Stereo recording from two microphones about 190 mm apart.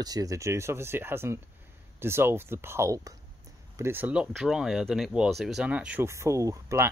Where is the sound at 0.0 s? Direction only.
20° right (ahead or behind).